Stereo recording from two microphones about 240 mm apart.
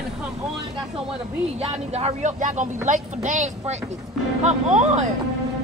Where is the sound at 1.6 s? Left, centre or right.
Right.